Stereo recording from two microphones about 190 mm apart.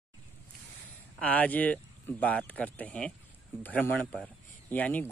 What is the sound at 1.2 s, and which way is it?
Speech, 5° left (ahead or behind).